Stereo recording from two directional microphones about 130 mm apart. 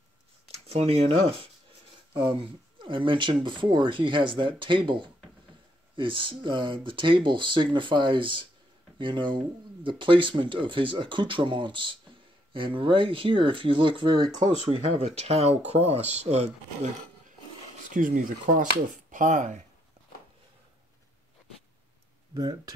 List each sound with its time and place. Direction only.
0.7 s speech: 50° right (ahead or behind)
14.4 s speech: 50° right (ahead or behind)
17.8 s speech: 85° right; by 19.6 s 70° right (ahead or behind)
22.3 s speech: 30° right (ahead or behind)